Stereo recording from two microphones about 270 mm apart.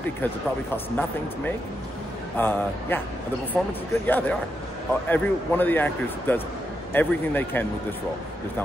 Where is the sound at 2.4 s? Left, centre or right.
Centre.